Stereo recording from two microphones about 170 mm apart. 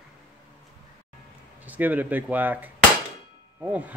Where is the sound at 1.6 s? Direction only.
10° right (ahead or behind).